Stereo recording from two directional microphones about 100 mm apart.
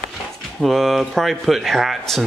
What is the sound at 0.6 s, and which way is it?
Speech, centre (ahead or behind).